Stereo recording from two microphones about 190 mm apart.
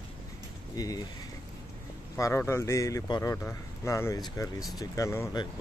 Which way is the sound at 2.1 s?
15° left (ahead or behind).